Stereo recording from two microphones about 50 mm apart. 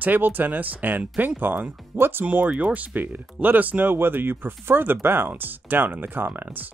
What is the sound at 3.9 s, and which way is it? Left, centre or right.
Speech, right.